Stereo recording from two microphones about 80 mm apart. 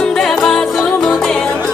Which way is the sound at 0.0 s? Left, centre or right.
Centre.